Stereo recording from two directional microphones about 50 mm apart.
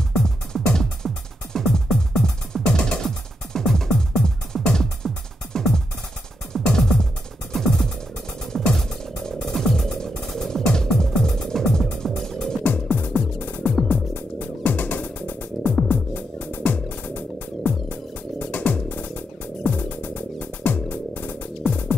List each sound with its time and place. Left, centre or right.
0.2 s music: centre
12.6 s music: left